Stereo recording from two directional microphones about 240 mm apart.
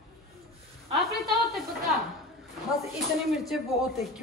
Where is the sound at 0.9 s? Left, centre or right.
Centre.